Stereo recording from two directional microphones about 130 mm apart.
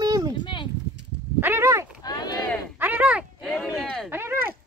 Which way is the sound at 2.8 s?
15° right (ahead or behind).